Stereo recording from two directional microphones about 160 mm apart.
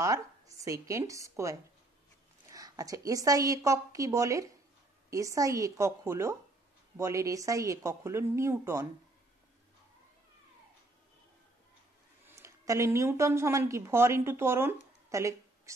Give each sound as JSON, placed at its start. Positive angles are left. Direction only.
{"t": 0.0, "sound": "a woman's voice", "side_deg": -20}
{"t": 12.3, "sound": "a woman's voice", "side_deg": -20}